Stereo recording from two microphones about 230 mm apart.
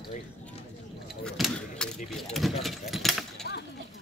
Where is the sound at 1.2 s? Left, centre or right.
Centre.